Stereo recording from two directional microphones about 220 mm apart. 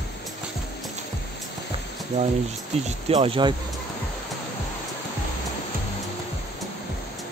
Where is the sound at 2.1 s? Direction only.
30° right (ahead or behind).